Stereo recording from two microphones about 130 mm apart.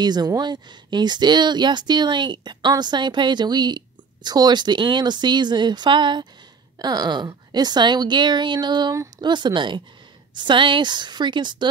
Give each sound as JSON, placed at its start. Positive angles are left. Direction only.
{"t": 0.0, "sound": "speech", "side_deg": -30}